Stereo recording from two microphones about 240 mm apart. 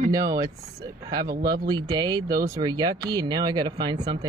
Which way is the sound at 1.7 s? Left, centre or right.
Centre.